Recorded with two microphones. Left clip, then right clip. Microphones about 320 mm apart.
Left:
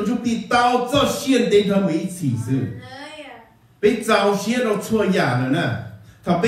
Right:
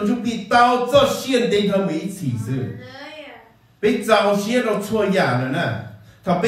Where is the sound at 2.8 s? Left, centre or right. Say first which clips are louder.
Even; left.